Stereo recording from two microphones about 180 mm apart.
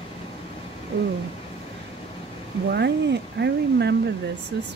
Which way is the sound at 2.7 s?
70° right (ahead or behind).